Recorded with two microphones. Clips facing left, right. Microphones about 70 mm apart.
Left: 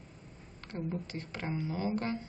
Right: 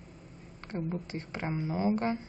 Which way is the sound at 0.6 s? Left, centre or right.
Right.